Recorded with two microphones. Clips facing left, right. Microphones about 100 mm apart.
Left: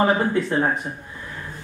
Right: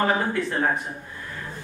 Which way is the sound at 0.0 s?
20° left (ahead or behind).